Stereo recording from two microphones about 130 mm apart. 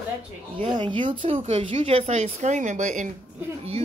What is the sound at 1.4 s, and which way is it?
A woman's voice, 50° right (ahead or behind).